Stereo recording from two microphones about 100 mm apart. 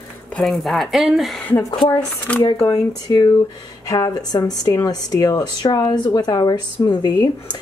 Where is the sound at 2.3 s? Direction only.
15° left (ahead or behind).